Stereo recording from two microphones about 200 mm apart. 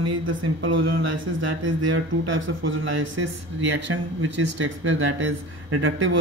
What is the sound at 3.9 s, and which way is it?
Speech, 90° right.